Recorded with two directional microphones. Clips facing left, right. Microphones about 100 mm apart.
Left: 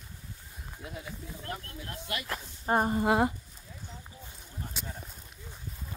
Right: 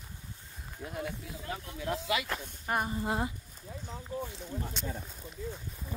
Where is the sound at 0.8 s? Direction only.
55° right (ahead or behind).